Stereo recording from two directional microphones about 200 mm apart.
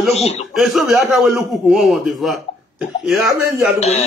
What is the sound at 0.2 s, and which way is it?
Speech, 30° left (ahead or behind).